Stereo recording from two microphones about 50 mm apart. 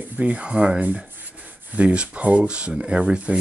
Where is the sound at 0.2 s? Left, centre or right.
Right.